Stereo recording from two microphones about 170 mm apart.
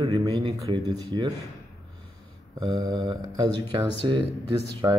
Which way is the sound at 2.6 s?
20° right (ahead or behind).